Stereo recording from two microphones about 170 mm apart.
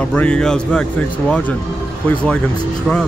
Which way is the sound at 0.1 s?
5° left (ahead or behind).